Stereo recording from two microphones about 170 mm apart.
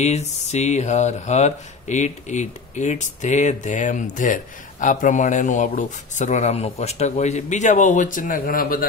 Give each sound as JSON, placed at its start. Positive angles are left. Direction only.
{"t": 0.0, "sound": "speech", "side_deg": 40}